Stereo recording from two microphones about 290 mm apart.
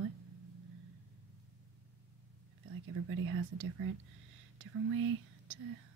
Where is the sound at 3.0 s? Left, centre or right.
Right.